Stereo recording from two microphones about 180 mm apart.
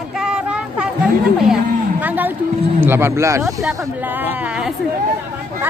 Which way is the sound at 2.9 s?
15° right (ahead or behind).